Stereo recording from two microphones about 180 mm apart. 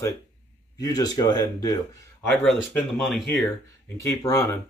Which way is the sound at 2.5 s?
Centre (ahead or behind).